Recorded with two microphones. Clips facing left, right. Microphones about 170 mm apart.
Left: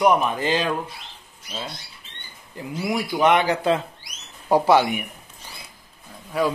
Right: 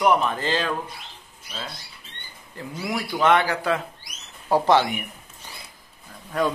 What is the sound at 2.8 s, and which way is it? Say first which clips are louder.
Speech: left 3 dB; 15° left (ahead or behind).